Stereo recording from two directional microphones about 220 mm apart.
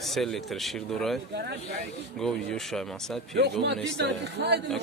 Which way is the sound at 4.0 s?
50° right (ahead or behind).